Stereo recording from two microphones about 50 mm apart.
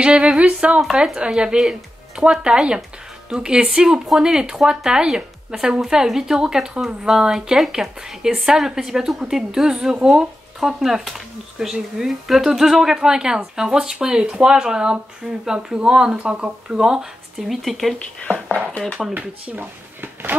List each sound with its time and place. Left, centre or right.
0.0 s a sound: centre
1.0 s speech: centre
19.1 s speech: right